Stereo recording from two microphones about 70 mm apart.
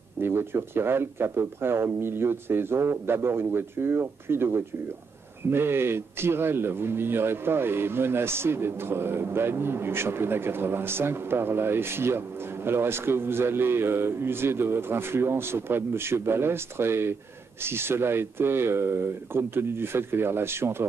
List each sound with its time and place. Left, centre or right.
0.2 s a man's voice: right